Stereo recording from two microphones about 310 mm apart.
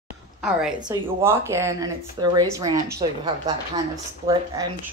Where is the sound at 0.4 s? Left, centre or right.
Centre.